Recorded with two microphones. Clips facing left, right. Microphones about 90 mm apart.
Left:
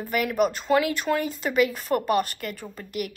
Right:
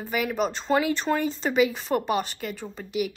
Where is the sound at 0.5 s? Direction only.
25° right (ahead or behind).